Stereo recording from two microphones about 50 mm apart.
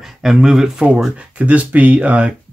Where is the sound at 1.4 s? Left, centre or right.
Right.